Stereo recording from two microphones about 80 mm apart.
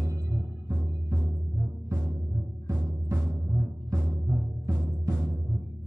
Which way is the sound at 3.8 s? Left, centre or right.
Centre.